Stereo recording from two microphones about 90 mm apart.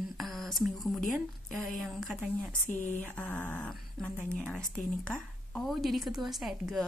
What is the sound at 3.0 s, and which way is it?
A woman's voice, 15° left (ahead or behind).